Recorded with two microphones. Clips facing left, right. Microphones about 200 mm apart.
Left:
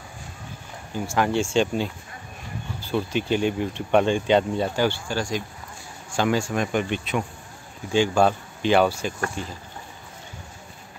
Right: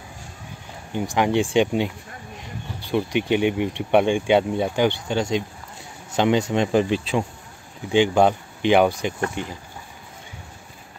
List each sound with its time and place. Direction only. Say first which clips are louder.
0.9 s speech: right 2 dB; 20° right (ahead or behind)
7.9 s speech: right 2 dB; 20° right (ahead or behind)